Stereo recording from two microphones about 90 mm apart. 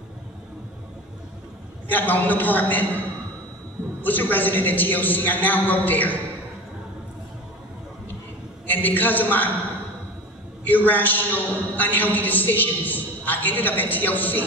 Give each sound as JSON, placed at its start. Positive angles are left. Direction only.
{"t": 1.9, "sound": "a man's voice", "side_deg": 20}
{"t": 4.0, "sound": "a man's voice", "side_deg": 20}
{"t": 8.6, "sound": "a man's voice", "side_deg": 20}
{"t": 10.7, "sound": "a man's voice", "side_deg": 20}